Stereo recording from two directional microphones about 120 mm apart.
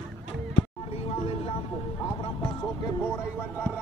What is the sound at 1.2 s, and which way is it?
Vehicle, 55° left (ahead or behind).